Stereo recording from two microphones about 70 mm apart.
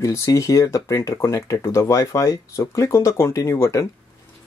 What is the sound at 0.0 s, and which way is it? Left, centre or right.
Speech, left.